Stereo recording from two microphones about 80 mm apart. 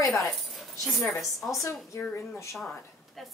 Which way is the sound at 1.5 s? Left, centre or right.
Left.